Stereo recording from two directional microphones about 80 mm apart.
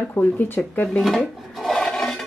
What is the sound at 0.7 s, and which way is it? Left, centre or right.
Speech, centre.